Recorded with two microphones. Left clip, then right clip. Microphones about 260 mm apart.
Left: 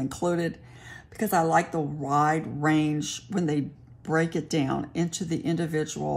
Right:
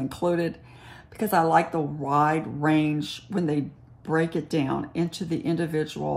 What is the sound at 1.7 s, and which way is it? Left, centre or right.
Speech, centre.